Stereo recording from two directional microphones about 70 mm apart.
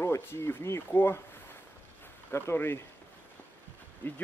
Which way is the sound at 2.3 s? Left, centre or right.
Left.